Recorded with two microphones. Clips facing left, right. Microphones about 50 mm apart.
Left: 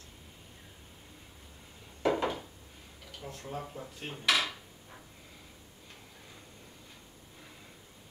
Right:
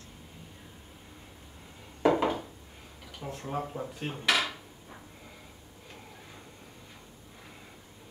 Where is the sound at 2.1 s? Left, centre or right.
Centre.